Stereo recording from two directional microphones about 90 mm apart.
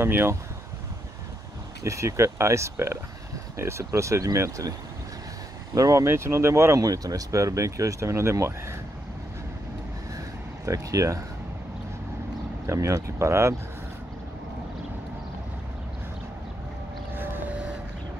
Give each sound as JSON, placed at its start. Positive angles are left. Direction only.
{"t": 0.0, "sound": "speech", "side_deg": -25}
{"t": 1.8, "sound": "speech", "side_deg": -35}
{"t": 5.8, "sound": "speech", "side_deg": -40}
{"t": 6.0, "sound": "speech", "side_deg": -30}
{"t": 10.6, "sound": "speech", "side_deg": -35}
{"t": 12.6, "sound": "speech", "side_deg": -35}
{"t": 17.1, "sound": "vehicle", "side_deg": -20}